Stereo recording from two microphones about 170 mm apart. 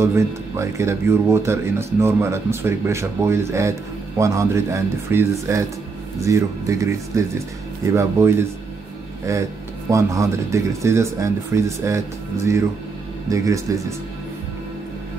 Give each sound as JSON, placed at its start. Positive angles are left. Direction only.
{"t": 0.0, "sound": "speech", "side_deg": -15}
{"t": 13.3, "sound": "speech", "side_deg": -20}